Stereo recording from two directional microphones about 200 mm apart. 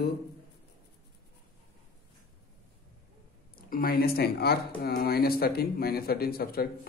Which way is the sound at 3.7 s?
50° left (ahead or behind).